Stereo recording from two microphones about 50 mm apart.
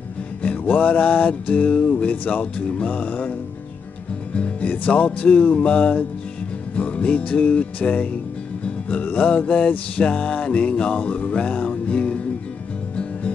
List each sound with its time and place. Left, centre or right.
0.4 s music: left